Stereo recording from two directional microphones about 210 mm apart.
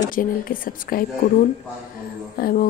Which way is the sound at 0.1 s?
40° left (ahead or behind).